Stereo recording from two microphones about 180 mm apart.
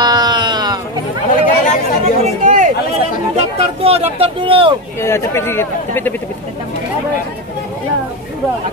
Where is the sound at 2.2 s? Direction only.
45° right (ahead or behind).